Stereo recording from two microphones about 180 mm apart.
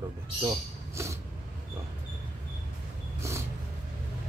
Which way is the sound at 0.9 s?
15° right (ahead or behind).